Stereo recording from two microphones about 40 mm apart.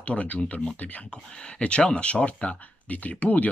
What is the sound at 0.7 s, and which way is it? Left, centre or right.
Speech, left.